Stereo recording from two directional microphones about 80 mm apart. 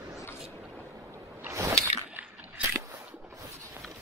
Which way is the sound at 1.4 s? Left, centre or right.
Right.